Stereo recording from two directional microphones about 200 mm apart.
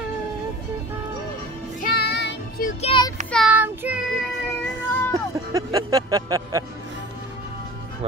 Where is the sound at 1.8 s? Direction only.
50° left (ahead or behind).